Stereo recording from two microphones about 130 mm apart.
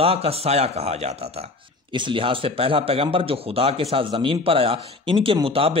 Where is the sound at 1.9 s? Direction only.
40° right (ahead or behind).